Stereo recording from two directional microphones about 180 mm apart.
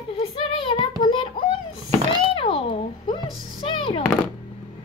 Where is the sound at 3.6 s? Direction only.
30° left (ahead or behind).